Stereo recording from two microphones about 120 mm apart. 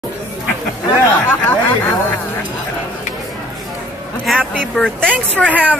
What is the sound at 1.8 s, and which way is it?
Speech, 15° left (ahead or behind).